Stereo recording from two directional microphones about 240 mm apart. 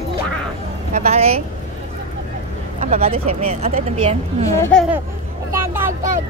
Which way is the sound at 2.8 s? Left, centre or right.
Right.